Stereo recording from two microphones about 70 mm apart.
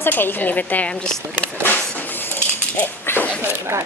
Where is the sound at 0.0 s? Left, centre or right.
Left.